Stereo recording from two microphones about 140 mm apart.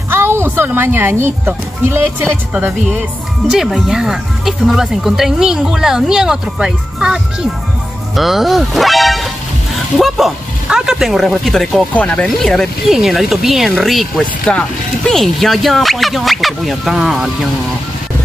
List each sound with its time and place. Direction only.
0.1 s speech: 15° right (ahead or behind)
8.2 s speech: centre (ahead or behind)